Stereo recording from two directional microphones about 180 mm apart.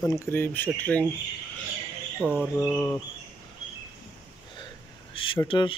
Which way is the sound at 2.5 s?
10° left (ahead or behind).